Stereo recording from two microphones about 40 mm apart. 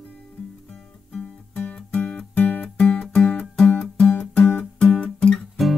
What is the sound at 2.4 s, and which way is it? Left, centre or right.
Music, left.